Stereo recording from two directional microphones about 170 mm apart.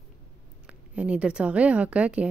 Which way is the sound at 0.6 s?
5° right (ahead or behind).